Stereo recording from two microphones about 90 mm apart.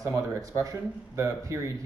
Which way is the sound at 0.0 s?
35° right (ahead or behind).